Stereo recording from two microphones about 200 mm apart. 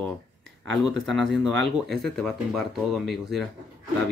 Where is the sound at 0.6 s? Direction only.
Centre (ahead or behind).